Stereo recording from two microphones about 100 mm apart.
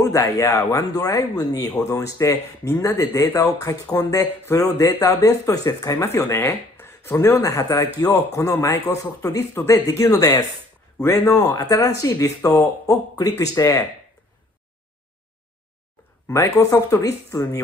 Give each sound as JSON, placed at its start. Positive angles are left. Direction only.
{"t": 0.0, "sound": "speech", "side_deg": 35}
{"t": 6.0, "sound": "speech", "side_deg": 25}
{"t": 9.5, "sound": "speech", "side_deg": 20}
{"t": 9.8, "sound": "speech", "side_deg": 30}
{"t": 16.3, "sound": "speech", "side_deg": 30}